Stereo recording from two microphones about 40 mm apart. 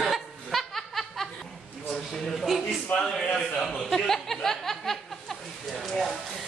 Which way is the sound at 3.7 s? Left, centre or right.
Centre.